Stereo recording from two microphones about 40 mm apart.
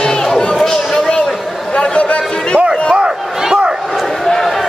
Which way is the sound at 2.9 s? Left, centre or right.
Centre.